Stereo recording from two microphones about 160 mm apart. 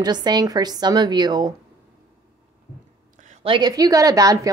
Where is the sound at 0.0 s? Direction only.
25° right (ahead or behind).